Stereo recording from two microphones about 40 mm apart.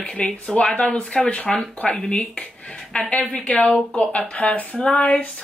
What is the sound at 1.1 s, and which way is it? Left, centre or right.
Speech, left.